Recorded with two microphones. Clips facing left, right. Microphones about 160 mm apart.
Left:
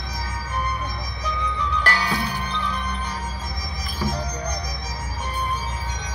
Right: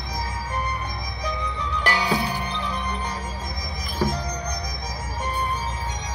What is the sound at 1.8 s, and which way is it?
Music, 20° right (ahead or behind).